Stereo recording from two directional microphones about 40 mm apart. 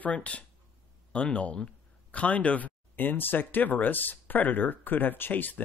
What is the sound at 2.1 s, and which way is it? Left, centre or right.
Speech, left.